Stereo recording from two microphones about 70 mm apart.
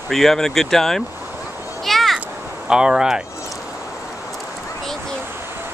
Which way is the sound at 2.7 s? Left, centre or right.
Centre.